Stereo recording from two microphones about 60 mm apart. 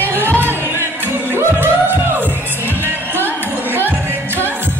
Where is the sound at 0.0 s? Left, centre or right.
Right.